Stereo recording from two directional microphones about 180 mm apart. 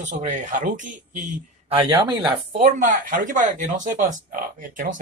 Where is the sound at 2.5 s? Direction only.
45° right (ahead or behind).